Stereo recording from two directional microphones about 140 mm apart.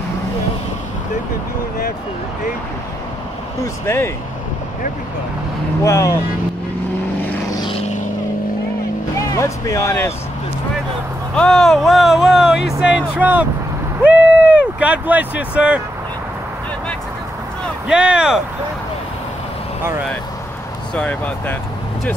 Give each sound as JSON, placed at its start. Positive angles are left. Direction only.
{"t": 3.6, "sound": "speech", "side_deg": 20}
{"t": 5.9, "sound": "speech", "side_deg": 20}
{"t": 9.3, "sound": "speech", "side_deg": 25}
{"t": 11.3, "sound": "speech", "side_deg": 5}
{"t": 17.8, "sound": "speech", "side_deg": -5}
{"t": 20.9, "sound": "speech", "side_deg": 10}